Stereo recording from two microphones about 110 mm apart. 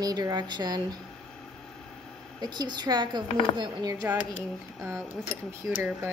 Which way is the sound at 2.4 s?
40° right (ahead or behind).